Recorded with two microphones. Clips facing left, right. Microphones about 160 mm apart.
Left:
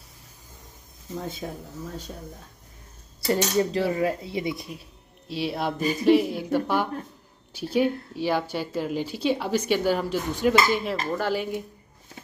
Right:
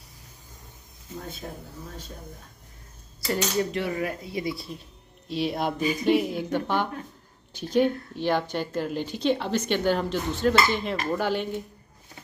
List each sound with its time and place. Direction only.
3.3 s cutlery: 30° left (ahead or behind)
5.3 s a woman's voice: centre (ahead or behind)